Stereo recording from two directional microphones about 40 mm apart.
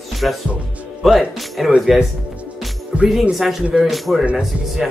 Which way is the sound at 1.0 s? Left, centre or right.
Centre.